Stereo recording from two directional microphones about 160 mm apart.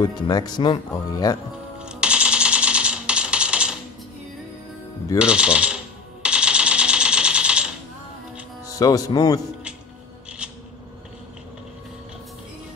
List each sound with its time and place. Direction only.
0.0 s speech: 25° left (ahead or behind)
1.8 s typewriter: 5° right (ahead or behind)
5.2 s speech: 5° right (ahead or behind)
6.2 s a sound: 5° right (ahead or behind)
8.6 s speech: 20° left (ahead or behind)
10.4 s scissors: 5° right (ahead or behind)